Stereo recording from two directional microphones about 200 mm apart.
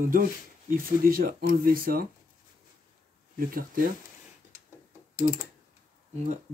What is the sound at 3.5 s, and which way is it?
Speech, 45° right (ahead or behind).